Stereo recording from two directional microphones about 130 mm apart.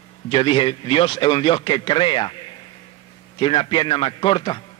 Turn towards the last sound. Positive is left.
turn(degrees=40)  # may be behind; listen again after turning